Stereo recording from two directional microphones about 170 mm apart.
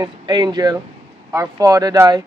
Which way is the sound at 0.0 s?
25° right (ahead or behind).